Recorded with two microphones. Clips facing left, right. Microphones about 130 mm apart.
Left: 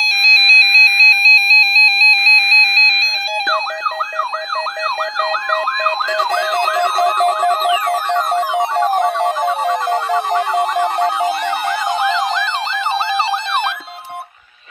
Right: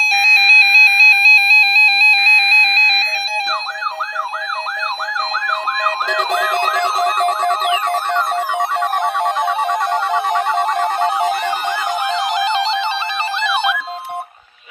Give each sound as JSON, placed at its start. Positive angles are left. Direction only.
{"t": 0.3, "sound": "music", "side_deg": 30}
{"t": 7.0, "sound": "music", "side_deg": 10}
{"t": 8.5, "sound": "music", "side_deg": 0}